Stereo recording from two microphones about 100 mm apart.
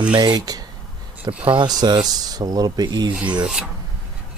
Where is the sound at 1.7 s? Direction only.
40° right (ahead or behind).